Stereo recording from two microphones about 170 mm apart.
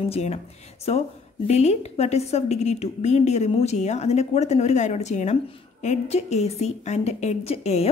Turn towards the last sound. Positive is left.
turn(degrees=35)  # may be behind; listen again after turning